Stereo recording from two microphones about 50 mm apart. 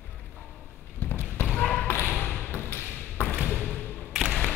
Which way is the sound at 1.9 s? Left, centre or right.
Left.